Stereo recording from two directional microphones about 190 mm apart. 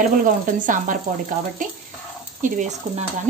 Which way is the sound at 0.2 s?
45° right (ahead or behind).